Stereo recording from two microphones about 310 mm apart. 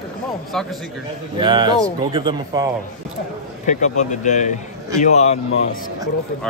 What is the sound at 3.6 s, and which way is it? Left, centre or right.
Speech, left.